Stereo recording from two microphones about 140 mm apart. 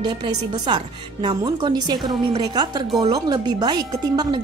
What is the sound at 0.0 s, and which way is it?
A woman's voice, 35° right (ahead or behind).